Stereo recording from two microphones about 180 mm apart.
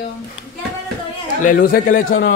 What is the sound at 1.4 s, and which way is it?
Speech, 50° left (ahead or behind).